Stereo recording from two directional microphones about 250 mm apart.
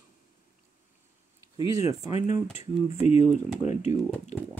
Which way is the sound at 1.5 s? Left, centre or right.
Centre.